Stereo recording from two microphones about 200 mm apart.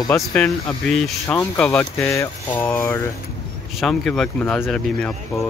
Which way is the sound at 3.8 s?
Centre (ahead or behind).